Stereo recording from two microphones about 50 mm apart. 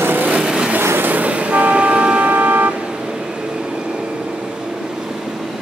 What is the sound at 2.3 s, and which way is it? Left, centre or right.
Vehicle, right.